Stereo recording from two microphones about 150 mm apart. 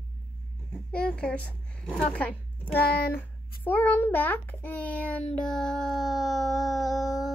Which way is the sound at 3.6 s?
10° left (ahead or behind).